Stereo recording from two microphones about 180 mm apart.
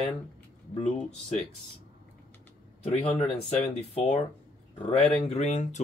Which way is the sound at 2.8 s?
30° left (ahead or behind).